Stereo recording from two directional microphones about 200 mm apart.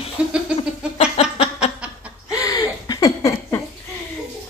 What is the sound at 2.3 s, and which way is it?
Laughter, 20° left (ahead or behind).